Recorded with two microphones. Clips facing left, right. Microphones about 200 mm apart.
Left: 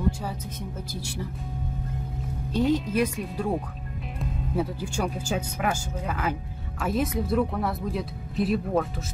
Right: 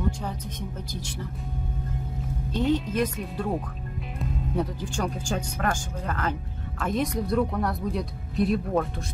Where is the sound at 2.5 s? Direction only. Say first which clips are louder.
Left 1 dB; 10° left (ahead or behind).